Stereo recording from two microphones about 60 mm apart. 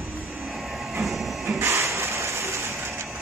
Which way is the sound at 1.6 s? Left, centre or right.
Right.